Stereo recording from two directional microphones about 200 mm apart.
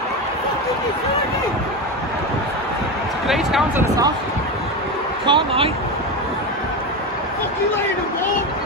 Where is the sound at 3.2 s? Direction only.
Centre (ahead or behind).